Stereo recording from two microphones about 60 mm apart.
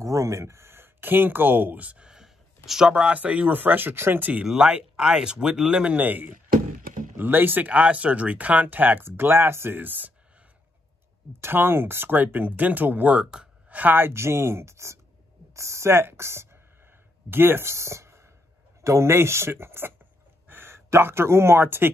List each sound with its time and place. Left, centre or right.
0.0 s a sound: right; by 2.9 s centre
2.9 s speech: centre
4.5 s speech: centre
5.9 s speech: right
7.7 s speech: right
11.4 s speech: right; by 13.5 s centre
13.7 s speech: right
14.1 s speech: right